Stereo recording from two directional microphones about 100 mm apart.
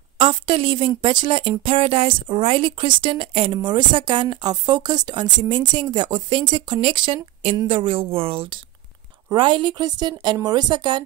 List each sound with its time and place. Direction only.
0.2 s a woman's voice: 60° right (ahead or behind)
1.6 s a sound: 70° right (ahead or behind)
2.2 s a woman's voice: 65° right (ahead or behind)
3.5 s a woman's voice: 50° right (ahead or behind); by 8.5 s 65° right (ahead or behind)
9.3 s speech: 50° right (ahead or behind)